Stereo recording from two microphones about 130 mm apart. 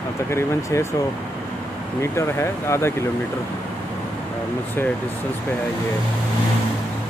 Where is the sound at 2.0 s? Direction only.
20° left (ahead or behind).